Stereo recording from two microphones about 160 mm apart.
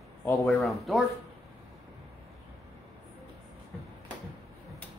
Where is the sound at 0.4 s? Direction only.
Centre (ahead or behind).